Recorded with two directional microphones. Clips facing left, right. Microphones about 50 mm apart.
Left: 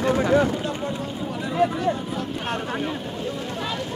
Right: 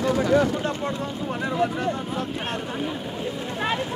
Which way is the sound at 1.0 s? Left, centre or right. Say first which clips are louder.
Right 1 dB; right.